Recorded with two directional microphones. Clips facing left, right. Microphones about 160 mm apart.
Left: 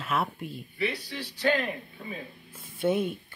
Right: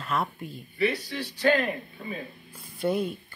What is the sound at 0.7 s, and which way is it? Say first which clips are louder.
Speech: right 5 dB; 45° right (ahead or behind).